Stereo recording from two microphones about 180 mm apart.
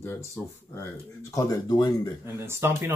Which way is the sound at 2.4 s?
15° right (ahead or behind).